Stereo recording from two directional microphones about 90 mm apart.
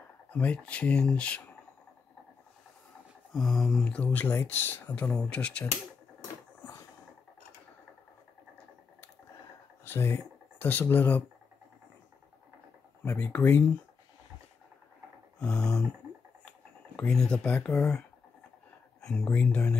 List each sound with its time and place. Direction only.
0.3 s speech: 15° left (ahead or behind)
3.3 s speech: centre (ahead or behind)
3.9 s speech: 15° left (ahead or behind)
4.9 s speech: 10° left (ahead or behind)
9.8 s speech: 25° left (ahead or behind)
13.0 s speech: 25° left (ahead or behind)
15.3 s a sound: 10° left (ahead or behind)
16.4 s speech: 15° left (ahead or behind)